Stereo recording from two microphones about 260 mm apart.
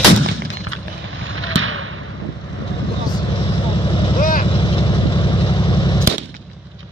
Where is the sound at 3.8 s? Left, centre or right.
Centre.